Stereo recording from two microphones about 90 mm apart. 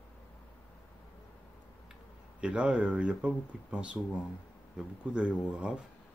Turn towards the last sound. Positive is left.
turn(degrees=-10)  # may be behind; listen again after turning